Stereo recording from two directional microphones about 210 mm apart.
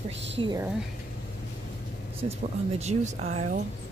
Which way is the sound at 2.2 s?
30° right (ahead or behind).